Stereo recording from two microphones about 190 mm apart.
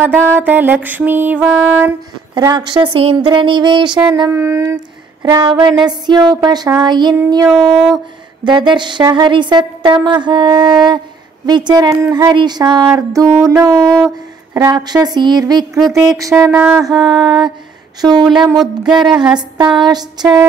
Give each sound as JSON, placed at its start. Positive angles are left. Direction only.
{"t": 0.0, "sound": "music", "side_deg": -10}
{"t": 2.3, "sound": "a woman's voice", "side_deg": -25}
{"t": 4.1, "sound": "music", "side_deg": -15}
{"t": 5.2, "sound": "a woman's voice", "side_deg": -20}
{"t": 7.4, "sound": "a sound", "side_deg": 0}
{"t": 8.5, "sound": "a woman's voice", "side_deg": -25}
{"t": 12.8, "sound": "music", "side_deg": -15}
{"t": 14.5, "sound": "a woman's voice", "side_deg": -15}
{"t": 16.1, "sound": "music", "side_deg": -15}
{"t": 16.8, "sound": "a woman's voice", "side_deg": -20}
{"t": 18.6, "sound": "a sound", "side_deg": 0}
{"t": 19.6, "sound": "a woman's voice", "side_deg": -20}